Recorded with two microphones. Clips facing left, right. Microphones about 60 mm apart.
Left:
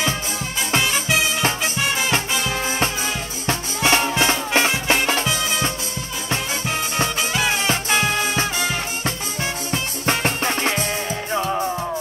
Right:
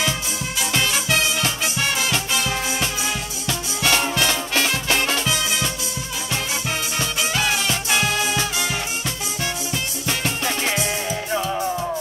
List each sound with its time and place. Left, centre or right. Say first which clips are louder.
0.7 s music: left 2 dB; centre
3.4 s music: left 3 dB; left
7.4 s music: left 2 dB; left